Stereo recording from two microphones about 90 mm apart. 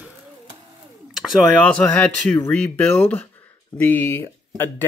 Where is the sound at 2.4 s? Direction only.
25° left (ahead or behind).